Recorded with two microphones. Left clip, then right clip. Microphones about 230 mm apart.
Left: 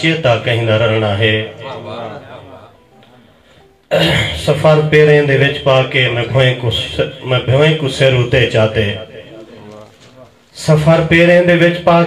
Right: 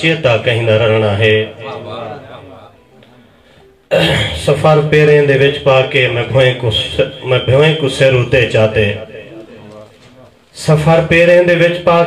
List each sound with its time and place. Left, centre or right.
0.0 s a man's voice: right
3.9 s a man's voice: right
10.5 s a man's voice: right